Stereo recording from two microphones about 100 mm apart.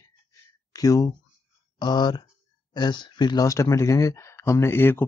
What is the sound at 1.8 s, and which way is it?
Speech, 45° left (ahead or behind).